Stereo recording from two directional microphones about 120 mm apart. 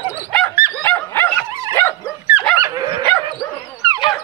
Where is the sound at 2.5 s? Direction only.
30° right (ahead or behind).